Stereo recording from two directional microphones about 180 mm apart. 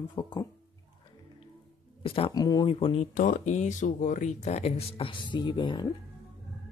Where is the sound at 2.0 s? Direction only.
30° left (ahead or behind).